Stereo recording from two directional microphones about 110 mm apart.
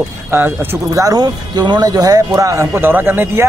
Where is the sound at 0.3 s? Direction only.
20° right (ahead or behind).